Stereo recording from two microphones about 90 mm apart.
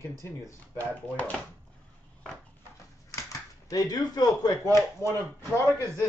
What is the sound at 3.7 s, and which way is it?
Speech, 45° left (ahead or behind).